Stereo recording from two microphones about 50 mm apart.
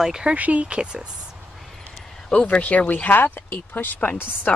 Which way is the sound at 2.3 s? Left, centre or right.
Left.